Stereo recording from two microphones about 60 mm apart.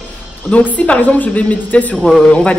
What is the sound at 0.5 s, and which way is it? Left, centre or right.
A woman's voice, left.